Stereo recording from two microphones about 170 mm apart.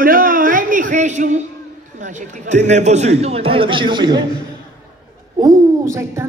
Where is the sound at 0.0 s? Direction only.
55° right (ahead or behind).